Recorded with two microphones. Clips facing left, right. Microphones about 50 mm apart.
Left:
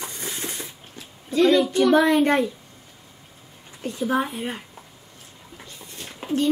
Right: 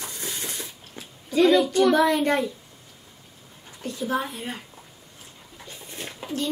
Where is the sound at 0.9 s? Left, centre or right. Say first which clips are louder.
Even; centre.